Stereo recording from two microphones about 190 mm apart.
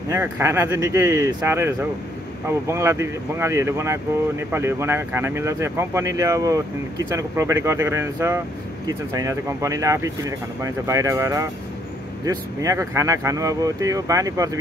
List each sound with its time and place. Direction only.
0.1 s speech: 15° right (ahead or behind)